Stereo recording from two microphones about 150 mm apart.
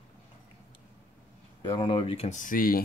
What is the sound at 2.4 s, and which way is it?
Speech, 70° left (ahead or behind).